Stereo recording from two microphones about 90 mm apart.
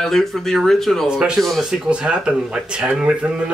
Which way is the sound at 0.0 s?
5° left (ahead or behind).